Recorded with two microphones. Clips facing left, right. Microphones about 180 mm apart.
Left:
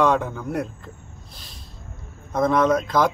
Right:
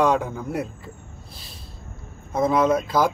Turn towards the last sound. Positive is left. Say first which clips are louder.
# left 1 dB
turn(degrees=-5)  # may be behind; listen again after turning